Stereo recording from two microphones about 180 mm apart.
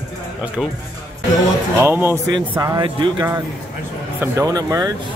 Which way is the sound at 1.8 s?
10° right (ahead or behind).